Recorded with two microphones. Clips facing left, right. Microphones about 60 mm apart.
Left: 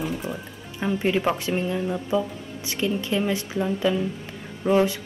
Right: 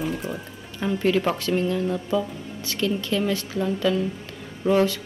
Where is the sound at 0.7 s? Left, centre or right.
Centre.